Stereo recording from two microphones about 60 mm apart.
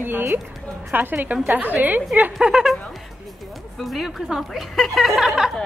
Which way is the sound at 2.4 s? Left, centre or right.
Centre.